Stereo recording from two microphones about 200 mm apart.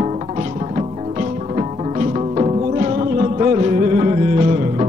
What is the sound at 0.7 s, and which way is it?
Music, 35° right (ahead or behind).